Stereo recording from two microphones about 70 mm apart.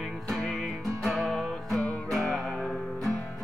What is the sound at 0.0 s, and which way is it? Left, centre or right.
Music, centre.